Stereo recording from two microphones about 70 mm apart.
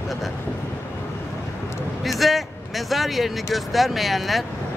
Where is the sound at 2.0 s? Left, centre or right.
Centre.